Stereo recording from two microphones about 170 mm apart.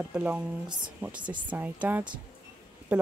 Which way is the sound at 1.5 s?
10° right (ahead or behind).